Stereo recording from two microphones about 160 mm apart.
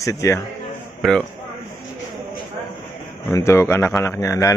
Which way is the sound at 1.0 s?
Centre (ahead or behind).